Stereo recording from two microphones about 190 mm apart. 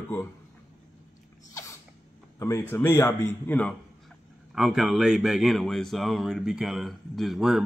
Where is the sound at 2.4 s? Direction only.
15° left (ahead or behind).